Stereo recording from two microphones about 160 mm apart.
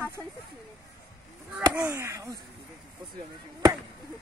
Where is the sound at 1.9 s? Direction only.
20° right (ahead or behind).